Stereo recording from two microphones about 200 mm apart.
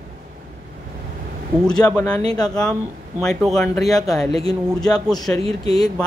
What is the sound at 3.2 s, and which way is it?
Speech, centre (ahead or behind).